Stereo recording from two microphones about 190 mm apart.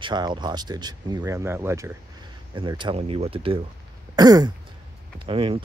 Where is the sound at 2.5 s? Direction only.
25° right (ahead or behind).